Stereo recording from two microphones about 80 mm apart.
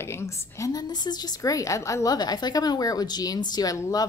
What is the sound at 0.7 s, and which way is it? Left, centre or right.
A woman's voice, left.